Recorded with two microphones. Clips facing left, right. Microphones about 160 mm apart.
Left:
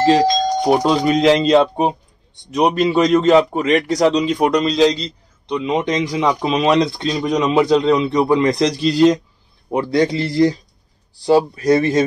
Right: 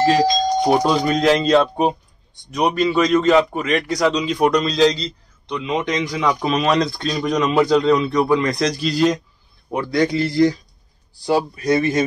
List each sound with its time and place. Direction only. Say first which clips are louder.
0.0 s a man's voice: left 2 dB; 25° left (ahead or behind)
5.7 s speech: left 2 dB; 30° left (ahead or behind)